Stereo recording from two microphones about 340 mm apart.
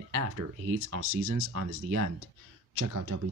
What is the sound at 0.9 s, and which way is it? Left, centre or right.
Speech, right.